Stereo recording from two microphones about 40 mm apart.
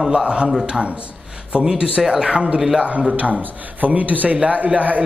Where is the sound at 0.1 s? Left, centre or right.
Right.